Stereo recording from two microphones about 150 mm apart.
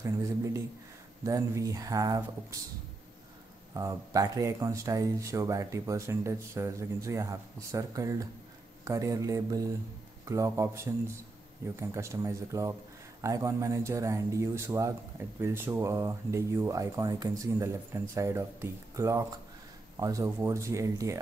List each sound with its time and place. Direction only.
0.0 s speech: 20° right (ahead or behind)
3.7 s speech: 20° right (ahead or behind)